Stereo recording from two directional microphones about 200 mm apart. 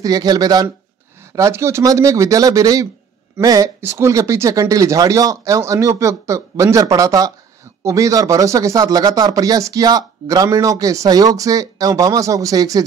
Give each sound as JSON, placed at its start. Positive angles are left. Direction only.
{"t": 0.0, "sound": "speech", "side_deg": -20}